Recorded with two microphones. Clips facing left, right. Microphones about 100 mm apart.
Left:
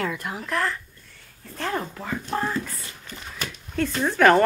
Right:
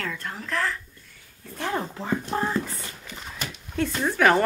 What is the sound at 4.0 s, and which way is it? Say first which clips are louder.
Speech: left 3 dB; 5° right (ahead or behind).